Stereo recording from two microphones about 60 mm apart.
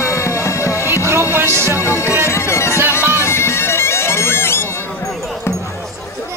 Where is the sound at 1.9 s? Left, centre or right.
Left.